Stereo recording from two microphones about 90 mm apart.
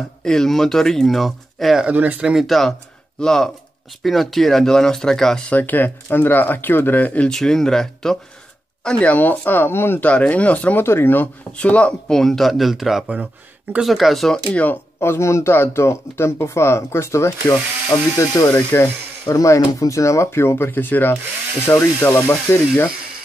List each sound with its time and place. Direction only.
0.2 s speech: 5° left (ahead or behind)
1.9 s speech: 20° right (ahead or behind)
2.3 s speech: centre (ahead or behind)
5.6 s speech: 20° left (ahead or behind); by 8.2 s 5° left (ahead or behind)
8.8 s speech: 15° left (ahead or behind)
10.0 s speech: 15° left (ahead or behind)
14.5 s speech: 15° left (ahead or behind)
15.0 s speech: 30° left (ahead or behind)
18.5 s speech: 20° left (ahead or behind)
19.2 s speech: 35° left (ahead or behind)